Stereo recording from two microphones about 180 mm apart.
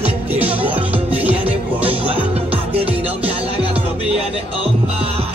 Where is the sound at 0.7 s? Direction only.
30° right (ahead or behind).